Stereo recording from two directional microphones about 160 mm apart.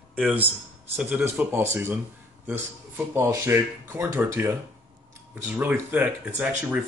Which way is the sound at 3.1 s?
15° right (ahead or behind).